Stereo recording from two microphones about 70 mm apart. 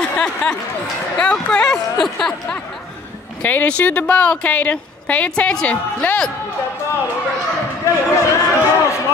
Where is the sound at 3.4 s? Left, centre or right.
Left.